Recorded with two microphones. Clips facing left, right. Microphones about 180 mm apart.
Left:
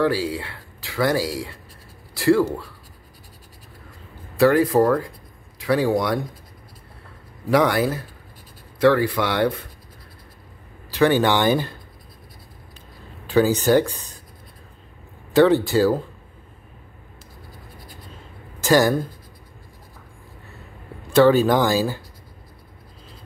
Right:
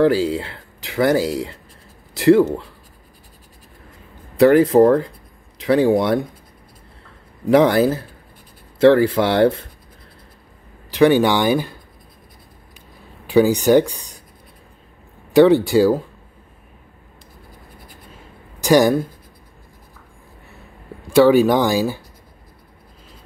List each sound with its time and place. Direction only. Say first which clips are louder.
0.0 s speech: right 5 dB; 25° right (ahead or behind)
4.4 s speech: right 5 dB; 25° right (ahead or behind)
7.5 s speech: right 5 dB; 25° right (ahead or behind)
10.9 s speech: right 4 dB; 15° right (ahead or behind)
13.3 s speech: right 4 dB; 15° right (ahead or behind)
15.3 s speech: right 4 dB; 15° right (ahead or behind)
18.6 s speech: right 3 dB; 15° right (ahead or behind)
21.1 s speech: right 3 dB; 10° right (ahead or behind)